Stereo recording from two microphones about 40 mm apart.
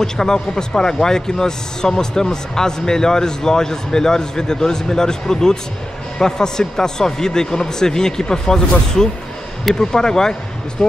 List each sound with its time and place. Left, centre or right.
0.0 s a man's voice: centre